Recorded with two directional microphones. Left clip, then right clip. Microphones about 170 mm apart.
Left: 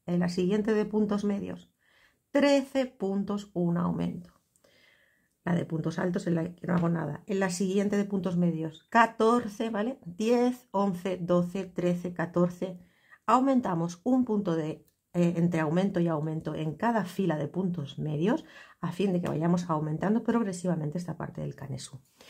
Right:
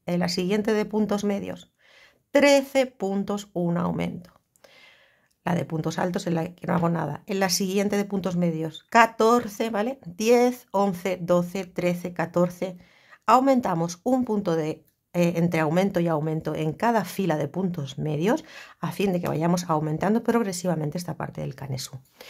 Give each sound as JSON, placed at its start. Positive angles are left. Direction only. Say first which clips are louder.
{"t": 0.0, "sound": "speech", "louder": "right 4 dB", "side_deg": -20}
{"t": 5.4, "sound": "speech", "louder": "right 5 dB", "side_deg": -20}